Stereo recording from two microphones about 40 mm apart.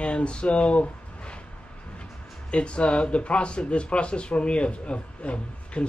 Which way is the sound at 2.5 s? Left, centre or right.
Left.